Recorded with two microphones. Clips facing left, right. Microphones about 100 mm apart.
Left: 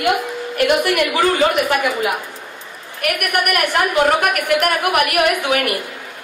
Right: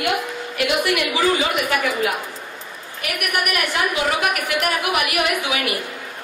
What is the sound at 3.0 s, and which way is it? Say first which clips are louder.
A woman's voice: left 5 dB; 60° left (ahead or behind).